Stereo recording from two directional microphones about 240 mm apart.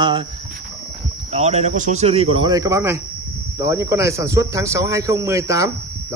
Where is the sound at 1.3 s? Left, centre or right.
Right.